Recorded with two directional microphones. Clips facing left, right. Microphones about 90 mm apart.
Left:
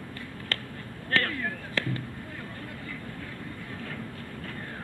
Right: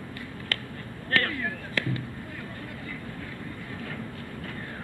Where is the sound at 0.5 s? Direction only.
30° left (ahead or behind).